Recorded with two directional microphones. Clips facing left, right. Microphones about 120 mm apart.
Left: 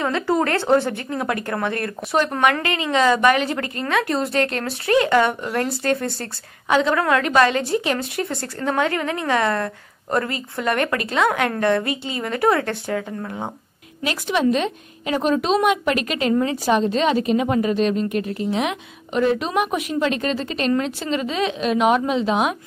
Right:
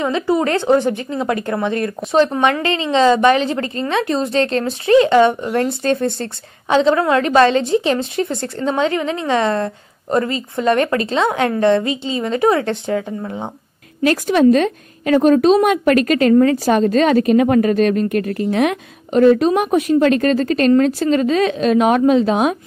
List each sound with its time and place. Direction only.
0.0 s speech: 15° right (ahead or behind)
14.0 s speech: 40° right (ahead or behind)